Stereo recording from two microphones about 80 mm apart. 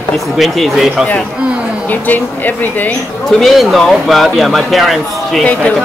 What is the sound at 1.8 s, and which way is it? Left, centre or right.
Speech, left.